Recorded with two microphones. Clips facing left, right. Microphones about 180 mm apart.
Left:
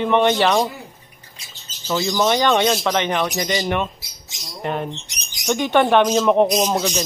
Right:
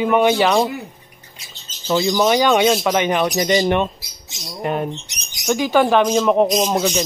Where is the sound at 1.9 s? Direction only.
15° right (ahead or behind).